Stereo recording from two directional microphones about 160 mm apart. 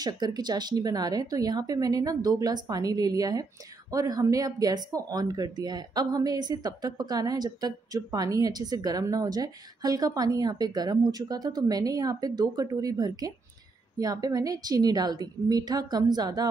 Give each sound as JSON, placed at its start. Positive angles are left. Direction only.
{"t": 0.0, "sound": "speech", "side_deg": -25}